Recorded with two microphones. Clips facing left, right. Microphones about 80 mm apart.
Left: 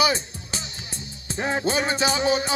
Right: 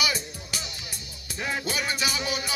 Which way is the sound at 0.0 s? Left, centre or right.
Left.